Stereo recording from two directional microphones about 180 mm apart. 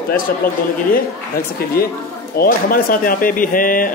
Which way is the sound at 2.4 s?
55° left (ahead or behind).